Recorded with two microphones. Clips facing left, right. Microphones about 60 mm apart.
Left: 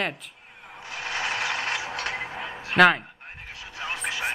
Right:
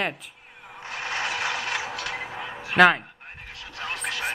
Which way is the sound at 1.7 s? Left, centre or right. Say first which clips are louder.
Even; centre.